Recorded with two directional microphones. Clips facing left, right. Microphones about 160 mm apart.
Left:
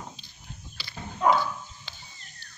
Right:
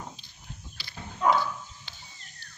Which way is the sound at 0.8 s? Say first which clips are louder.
Left 3 dB; 90° left.